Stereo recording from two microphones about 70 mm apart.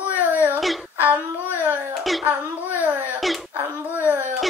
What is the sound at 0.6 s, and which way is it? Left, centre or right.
Speech, centre.